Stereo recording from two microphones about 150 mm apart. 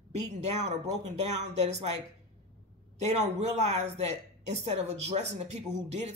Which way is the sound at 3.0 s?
50° right (ahead or behind).